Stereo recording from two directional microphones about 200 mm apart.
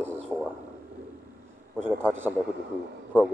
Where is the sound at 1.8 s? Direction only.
10° right (ahead or behind).